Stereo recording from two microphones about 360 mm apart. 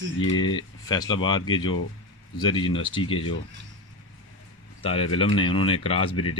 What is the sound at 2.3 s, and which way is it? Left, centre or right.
Speech, centre.